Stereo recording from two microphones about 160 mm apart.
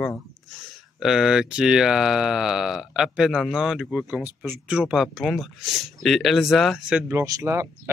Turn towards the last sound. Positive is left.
turn(degrees=-20)  # may be behind; listen again after turning